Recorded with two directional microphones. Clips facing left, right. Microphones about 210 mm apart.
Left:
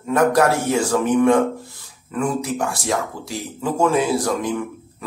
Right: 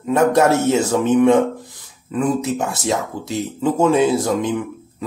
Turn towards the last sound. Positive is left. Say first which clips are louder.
# right 3 dB
turn(degrees=-25)  # may be behind; listen again after turning